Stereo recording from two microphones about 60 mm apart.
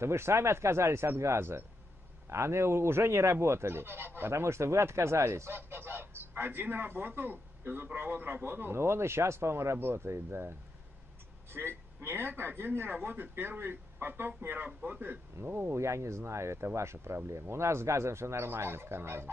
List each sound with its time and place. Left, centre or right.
0.0 s speech: right
4.3 s speech: right
5.5 s a man's voice: right
11.5 s a man's voice: right
14.7 s a man's voice: centre
15.4 s speech: right